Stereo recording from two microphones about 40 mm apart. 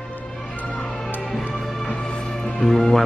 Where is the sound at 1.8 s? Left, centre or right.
Left.